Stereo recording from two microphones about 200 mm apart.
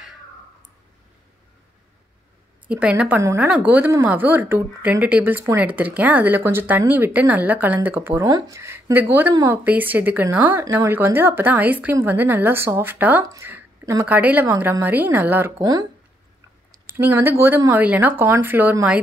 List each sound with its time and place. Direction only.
2.7 s a woman's voice: 5° right (ahead or behind)
15.5 s a woman's voice: 20° right (ahead or behind)